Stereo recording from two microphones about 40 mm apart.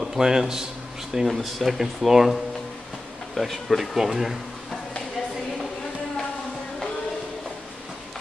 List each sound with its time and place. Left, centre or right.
0.0 s a man's voice: centre
1.2 s speech: centre